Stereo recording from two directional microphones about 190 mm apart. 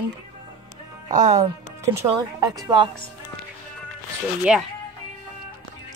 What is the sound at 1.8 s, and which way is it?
Speech, 20° right (ahead or behind).